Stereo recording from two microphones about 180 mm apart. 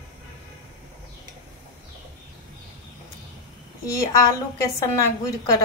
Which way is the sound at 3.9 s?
20° left (ahead or behind).